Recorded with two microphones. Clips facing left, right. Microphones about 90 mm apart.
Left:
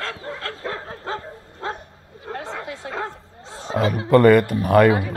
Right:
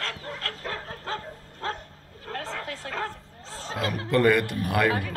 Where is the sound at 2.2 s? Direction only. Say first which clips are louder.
Left 3 dB; 20° left (ahead or behind).